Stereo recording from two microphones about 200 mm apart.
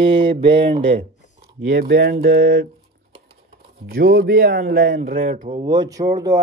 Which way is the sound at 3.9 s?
45° right (ahead or behind).